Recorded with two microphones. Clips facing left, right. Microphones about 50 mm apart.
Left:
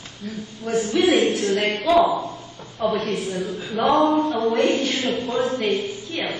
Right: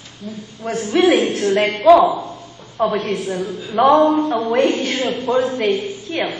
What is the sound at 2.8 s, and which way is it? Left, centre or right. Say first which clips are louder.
Speech: right 4 dB; right.